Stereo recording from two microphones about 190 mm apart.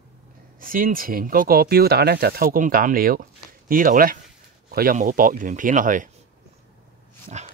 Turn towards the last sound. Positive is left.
turn(degrees=-35)  # may be behind; listen again after turning